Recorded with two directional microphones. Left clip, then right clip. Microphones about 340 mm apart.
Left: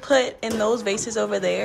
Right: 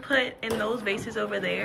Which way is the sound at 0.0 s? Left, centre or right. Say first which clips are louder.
Left 6 dB; centre.